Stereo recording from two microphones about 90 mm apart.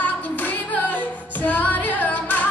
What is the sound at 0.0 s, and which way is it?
Music, 20° left (ahead or behind).